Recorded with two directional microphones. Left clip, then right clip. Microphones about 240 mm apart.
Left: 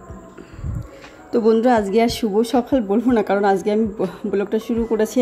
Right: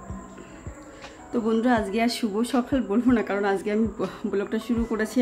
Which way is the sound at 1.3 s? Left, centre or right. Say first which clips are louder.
Left 8 dB; centre.